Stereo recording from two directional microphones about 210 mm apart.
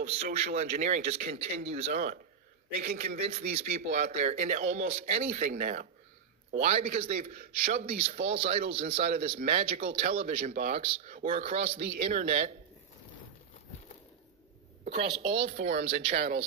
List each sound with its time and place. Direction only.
0.0 s speech: 30° right (ahead or behind)
2.8 s a man's voice: 45° right (ahead or behind)
3.3 s a man's voice: 30° right (ahead or behind)
14.9 s a man's voice: 25° right (ahead or behind)
15.5 s speech: 40° right (ahead or behind)
15.9 s a man's voice: 30° right (ahead or behind)